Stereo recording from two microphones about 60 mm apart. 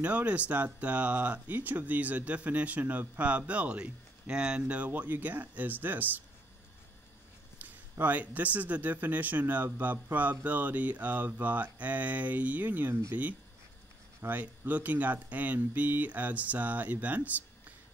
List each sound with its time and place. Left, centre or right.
0.0 s speech: right
7.5 s speech: right